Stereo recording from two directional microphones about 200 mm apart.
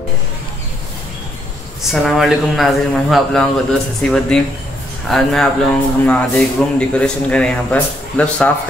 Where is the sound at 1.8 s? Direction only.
Centre (ahead or behind).